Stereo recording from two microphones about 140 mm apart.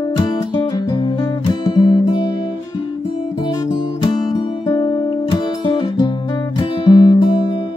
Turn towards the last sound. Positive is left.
turn(degrees=35)  # may be behind; listen again after turning